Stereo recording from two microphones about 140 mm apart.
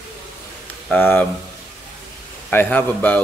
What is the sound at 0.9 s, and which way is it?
Speech, 10° left (ahead or behind).